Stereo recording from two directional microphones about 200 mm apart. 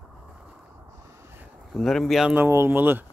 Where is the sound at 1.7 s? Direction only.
Centre (ahead or behind).